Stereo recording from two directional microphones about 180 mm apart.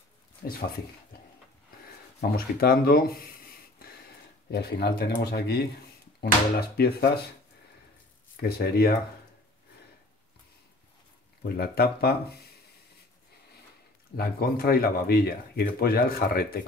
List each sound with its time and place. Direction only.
0.4 s speech: 55° left (ahead or behind)
2.3 s speech: 55° left (ahead or behind)
8.4 s speech: 60° left (ahead or behind)
11.4 s speech: 60° left (ahead or behind)
14.1 s speech: 60° left (ahead or behind)